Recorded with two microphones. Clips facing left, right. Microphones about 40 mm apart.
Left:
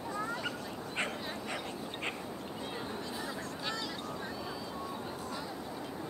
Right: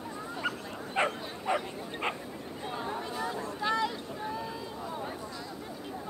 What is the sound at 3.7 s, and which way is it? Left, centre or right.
Vehicle, right.